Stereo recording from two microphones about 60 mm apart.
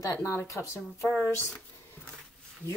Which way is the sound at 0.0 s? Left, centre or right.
Left.